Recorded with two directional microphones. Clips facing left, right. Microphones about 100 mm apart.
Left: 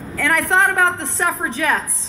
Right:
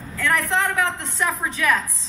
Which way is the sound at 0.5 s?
50° left (ahead or behind).